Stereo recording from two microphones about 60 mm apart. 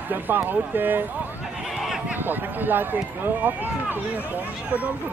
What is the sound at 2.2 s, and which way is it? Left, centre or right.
Speech, right.